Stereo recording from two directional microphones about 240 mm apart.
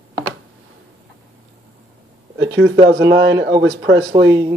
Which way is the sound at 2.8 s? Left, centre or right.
Right.